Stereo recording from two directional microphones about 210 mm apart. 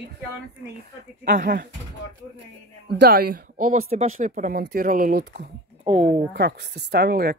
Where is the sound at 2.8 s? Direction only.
50° right (ahead or behind).